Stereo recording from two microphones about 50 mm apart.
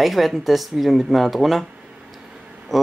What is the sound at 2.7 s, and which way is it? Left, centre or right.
Speech, centre.